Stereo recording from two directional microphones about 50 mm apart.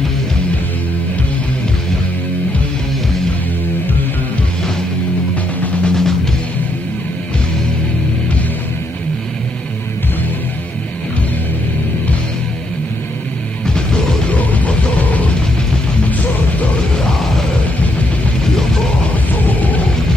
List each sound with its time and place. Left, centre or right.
5.3 s music: left
5.9 s music: centre
14.4 s music: left